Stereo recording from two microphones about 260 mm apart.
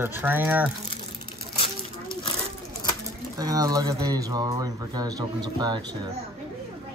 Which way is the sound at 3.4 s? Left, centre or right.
Centre.